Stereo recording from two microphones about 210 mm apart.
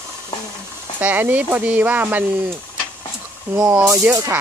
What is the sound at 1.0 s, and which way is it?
Speech, 10° right (ahead or behind).